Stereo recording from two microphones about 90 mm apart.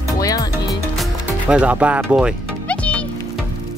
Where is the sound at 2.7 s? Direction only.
15° left (ahead or behind).